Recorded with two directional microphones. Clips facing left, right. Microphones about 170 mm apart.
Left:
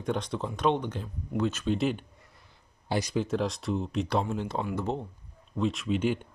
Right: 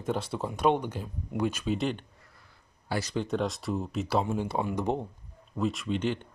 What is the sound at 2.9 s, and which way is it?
Speech, 15° left (ahead or behind).